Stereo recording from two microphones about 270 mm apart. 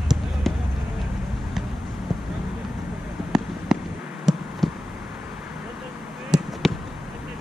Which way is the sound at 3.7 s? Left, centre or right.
Centre.